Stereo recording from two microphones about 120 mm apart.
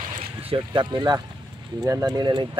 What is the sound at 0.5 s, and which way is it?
Speech, 40° right (ahead or behind).